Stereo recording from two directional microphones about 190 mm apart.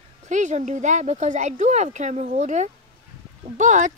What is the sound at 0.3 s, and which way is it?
Speech, 40° right (ahead or behind).